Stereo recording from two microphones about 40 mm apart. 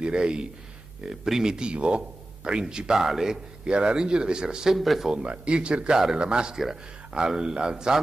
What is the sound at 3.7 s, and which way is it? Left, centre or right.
Speech, right.